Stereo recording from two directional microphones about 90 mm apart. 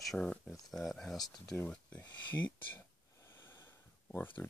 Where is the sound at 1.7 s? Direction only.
15° left (ahead or behind).